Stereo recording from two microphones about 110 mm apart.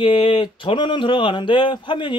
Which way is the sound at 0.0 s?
45° left (ahead or behind).